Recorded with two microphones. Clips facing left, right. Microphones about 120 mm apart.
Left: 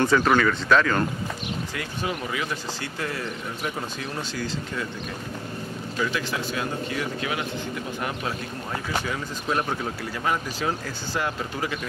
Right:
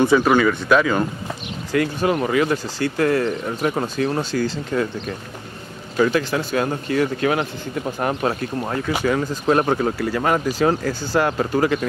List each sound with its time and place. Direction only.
0.0 s speech: 10° right (ahead or behind)
1.7 s speech: 60° right (ahead or behind)
5.9 s a man's voice: 50° right (ahead or behind)